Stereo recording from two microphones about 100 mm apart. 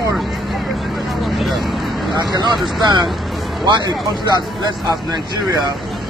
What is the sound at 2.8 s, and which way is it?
Speech, 45° right (ahead or behind).